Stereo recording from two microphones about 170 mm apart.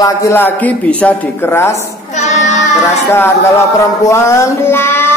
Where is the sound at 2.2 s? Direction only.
40° left (ahead or behind).